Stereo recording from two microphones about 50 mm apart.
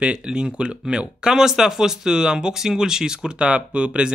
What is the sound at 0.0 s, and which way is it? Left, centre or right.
Speech, right.